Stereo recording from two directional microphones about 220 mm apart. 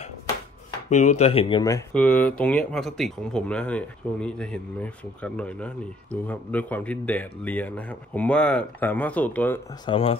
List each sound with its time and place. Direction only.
0.8 s speech: 35° left (ahead or behind)
2.0 s a man's voice: 5° left (ahead or behind)
9.8 s speech: 25° left (ahead or behind)